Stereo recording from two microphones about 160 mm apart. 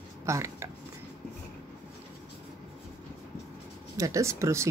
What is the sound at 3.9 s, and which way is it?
Speech, 20° right (ahead or behind).